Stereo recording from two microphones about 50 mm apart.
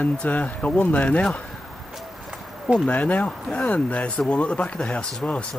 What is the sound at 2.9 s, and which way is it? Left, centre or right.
Speech, left.